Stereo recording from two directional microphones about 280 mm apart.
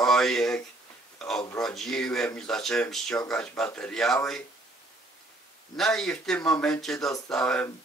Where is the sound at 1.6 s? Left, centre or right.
Centre.